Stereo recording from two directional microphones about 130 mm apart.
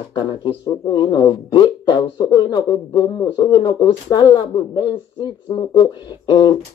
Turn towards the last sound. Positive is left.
turn(degrees=35)  # may be behind; listen again after turning